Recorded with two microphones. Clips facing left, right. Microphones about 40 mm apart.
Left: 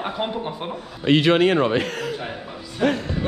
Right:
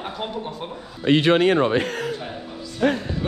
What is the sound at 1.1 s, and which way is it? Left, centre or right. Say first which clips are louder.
Speech: even; left.